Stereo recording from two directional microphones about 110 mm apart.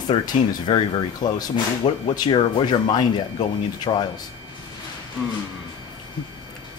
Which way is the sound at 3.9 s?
55° left (ahead or behind).